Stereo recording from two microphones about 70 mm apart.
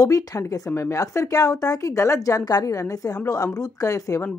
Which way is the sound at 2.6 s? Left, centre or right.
Left.